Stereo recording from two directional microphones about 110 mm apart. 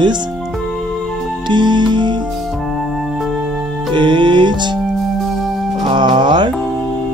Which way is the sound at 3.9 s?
45° right (ahead or behind).